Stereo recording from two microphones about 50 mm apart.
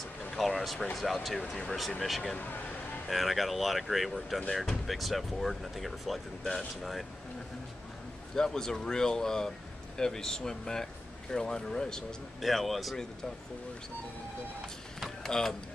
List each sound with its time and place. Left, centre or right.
0.6 s speech: centre
8.4 s speech: centre
12.4 s speech: centre
15.0 s a sound: centre